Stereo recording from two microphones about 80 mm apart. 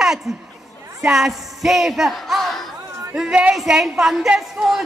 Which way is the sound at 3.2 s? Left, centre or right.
Centre.